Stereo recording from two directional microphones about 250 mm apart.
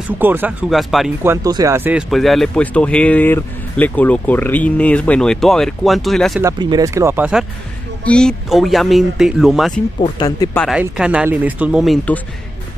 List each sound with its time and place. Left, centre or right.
0.2 s speech: centre
6.4 s speech: centre
9.9 s speech: centre
10.6 s speech: centre